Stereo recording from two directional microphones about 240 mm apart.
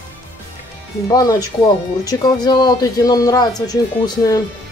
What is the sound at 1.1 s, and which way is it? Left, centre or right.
Speech, centre.